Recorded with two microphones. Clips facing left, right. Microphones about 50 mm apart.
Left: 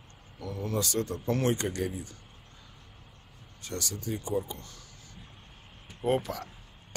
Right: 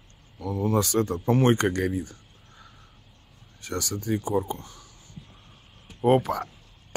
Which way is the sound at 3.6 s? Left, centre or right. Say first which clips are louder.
Right 6 dB; right.